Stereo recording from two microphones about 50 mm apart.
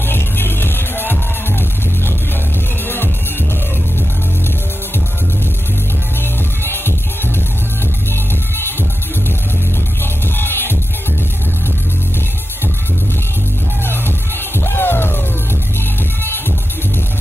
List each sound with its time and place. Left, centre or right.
0.1 s music: left
6.6 s music: left
10.3 s music: left
14.6 s music: left